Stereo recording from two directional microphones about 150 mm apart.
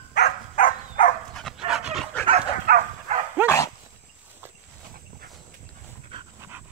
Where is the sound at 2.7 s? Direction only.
90° right.